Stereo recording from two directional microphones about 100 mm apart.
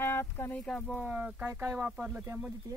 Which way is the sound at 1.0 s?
10° right (ahead or behind).